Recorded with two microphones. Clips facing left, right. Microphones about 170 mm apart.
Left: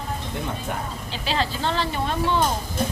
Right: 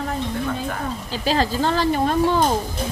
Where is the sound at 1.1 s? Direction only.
40° right (ahead or behind).